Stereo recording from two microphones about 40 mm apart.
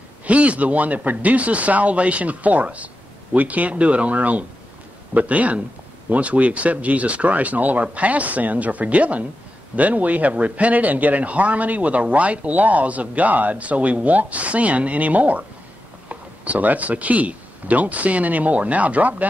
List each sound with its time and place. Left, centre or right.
0.2 s speech: right